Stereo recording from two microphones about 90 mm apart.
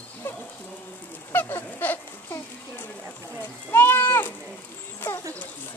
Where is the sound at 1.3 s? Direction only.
20° left (ahead or behind).